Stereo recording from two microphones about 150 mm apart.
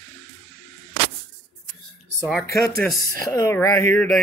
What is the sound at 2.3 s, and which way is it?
Speech, 15° left (ahead or behind).